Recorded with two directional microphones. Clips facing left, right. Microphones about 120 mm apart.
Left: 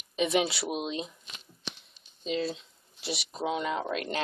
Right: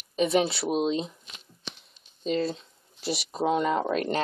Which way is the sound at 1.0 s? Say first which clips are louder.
Right 3 dB; centre (ahead or behind).